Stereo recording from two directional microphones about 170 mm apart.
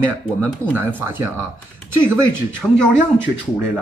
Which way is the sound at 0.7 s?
15° right (ahead or behind).